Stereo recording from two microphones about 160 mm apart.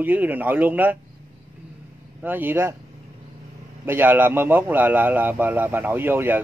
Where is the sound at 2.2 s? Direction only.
10° right (ahead or behind).